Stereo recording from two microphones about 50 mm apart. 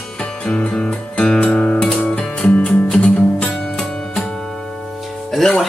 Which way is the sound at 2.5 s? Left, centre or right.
Left.